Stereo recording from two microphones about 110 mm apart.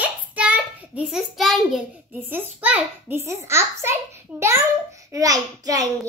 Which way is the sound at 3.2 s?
25° right (ahead or behind).